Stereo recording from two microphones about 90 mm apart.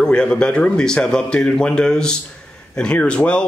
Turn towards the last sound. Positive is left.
turn(degrees=10)  # may be behind; listen again after turning